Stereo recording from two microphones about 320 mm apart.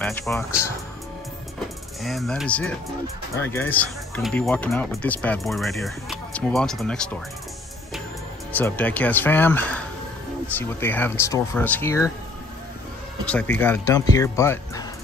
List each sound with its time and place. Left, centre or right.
0.0 s speech: centre
2.0 s speech: centre
8.5 s speech: centre
13.2 s speech: centre